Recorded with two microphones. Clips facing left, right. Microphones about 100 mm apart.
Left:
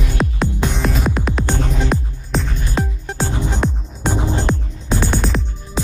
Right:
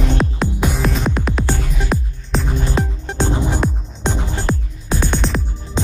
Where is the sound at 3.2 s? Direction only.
15° right (ahead or behind).